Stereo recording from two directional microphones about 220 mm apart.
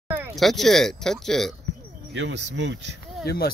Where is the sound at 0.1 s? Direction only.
5° right (ahead or behind).